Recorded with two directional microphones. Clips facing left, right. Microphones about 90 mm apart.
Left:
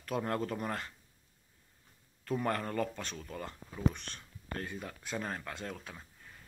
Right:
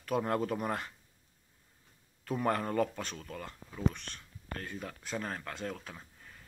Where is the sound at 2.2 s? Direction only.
5° right (ahead or behind).